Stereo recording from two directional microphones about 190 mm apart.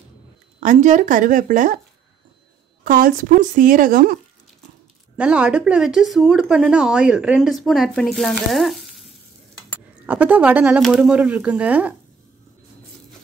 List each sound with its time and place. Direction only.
0.6 s a woman's voice: 40° right (ahead or behind)
2.8 s a woman's voice: 45° right (ahead or behind)
5.1 s speech: 5° right (ahead or behind)